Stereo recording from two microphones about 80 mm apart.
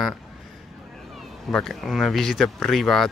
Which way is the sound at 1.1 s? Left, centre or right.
Centre.